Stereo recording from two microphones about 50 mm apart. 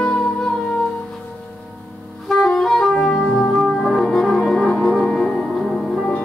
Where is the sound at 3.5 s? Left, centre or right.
Centre.